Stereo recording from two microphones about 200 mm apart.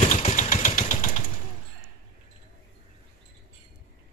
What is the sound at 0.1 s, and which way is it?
Engine, 35° left (ahead or behind).